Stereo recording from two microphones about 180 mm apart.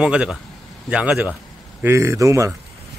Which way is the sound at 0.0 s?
5° right (ahead or behind).